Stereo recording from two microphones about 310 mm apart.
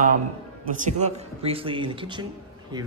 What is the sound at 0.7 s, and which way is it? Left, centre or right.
Speech, right.